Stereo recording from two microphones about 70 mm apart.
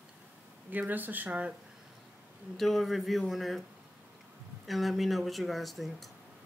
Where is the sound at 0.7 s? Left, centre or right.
Right.